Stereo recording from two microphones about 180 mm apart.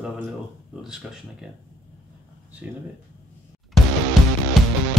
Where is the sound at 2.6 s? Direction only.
5° right (ahead or behind).